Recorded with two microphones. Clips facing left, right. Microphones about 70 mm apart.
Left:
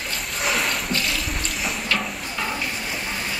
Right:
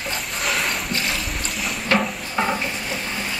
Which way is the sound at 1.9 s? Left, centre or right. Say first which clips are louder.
Right 5 dB; right.